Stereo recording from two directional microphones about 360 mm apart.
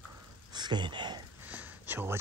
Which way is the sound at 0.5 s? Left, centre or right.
Centre.